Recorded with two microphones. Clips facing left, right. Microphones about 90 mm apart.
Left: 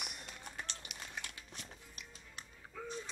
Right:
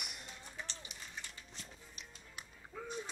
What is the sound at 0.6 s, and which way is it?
Run, 65° left (ahead or behind).